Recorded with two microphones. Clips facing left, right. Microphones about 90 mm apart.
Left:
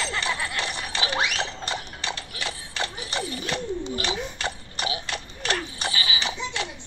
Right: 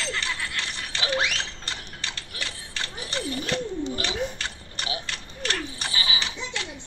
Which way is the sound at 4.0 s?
15° left (ahead or behind).